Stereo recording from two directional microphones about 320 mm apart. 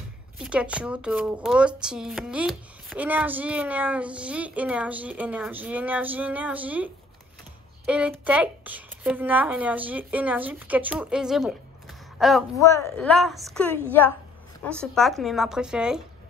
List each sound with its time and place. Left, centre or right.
0.4 s speech: centre